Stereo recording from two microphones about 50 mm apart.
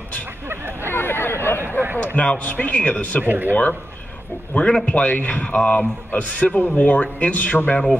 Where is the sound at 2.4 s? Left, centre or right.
Left.